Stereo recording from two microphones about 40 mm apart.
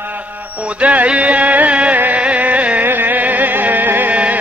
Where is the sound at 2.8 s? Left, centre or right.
Right.